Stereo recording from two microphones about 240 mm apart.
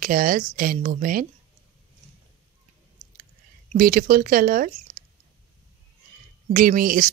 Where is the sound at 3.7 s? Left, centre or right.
Right.